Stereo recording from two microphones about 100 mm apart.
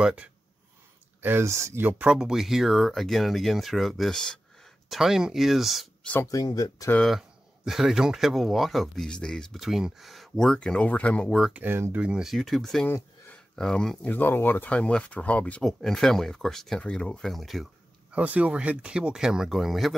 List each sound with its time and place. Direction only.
0.0 s speech: 10° right (ahead or behind)
1.2 s speech: 25° right (ahead or behind); by 5.9 s centre (ahead or behind)
6.2 s speech: 40° left (ahead or behind)
7.1 s speech: 5° right (ahead or behind); by 11.3 s 15° left (ahead or behind)
11.5 s speech: 20° right (ahead or behind)
12.0 s speech: 5° right (ahead or behind)
12.8 s a sound: 20° left (ahead or behind)
13.6 s speech: 5° left (ahead or behind)
18.1 s speech: 15° right (ahead or behind)